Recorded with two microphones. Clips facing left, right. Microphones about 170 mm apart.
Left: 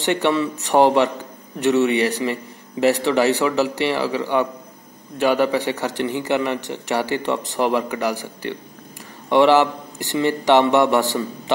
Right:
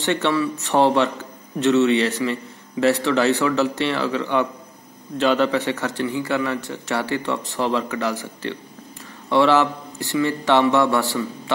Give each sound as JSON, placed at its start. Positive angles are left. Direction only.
{"t": 0.0, "sound": "a man's voice", "side_deg": 15}